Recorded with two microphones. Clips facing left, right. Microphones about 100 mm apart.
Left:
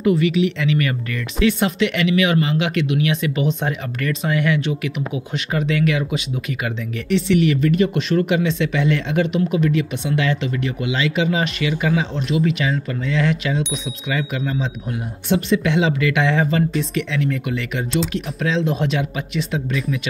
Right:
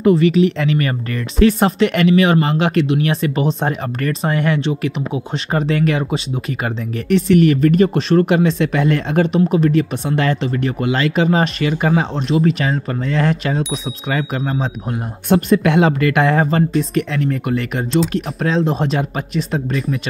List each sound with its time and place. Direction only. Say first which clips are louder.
0.0 s speech: right 4 dB; 35° right (ahead or behind)